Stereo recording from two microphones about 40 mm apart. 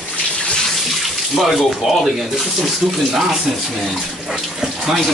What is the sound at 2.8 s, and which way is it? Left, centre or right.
Speech, centre.